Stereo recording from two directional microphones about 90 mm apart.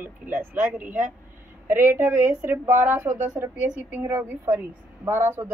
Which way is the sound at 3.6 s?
20° right (ahead or behind).